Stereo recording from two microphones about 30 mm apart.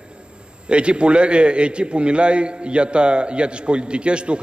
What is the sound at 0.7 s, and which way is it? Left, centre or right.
A man's voice, right.